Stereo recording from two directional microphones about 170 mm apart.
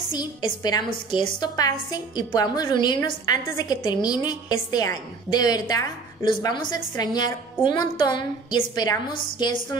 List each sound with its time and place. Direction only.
0.1 s a woman's voice: 25° left (ahead or behind)